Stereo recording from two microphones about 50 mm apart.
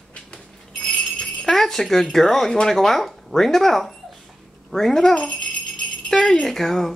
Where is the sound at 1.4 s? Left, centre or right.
Centre.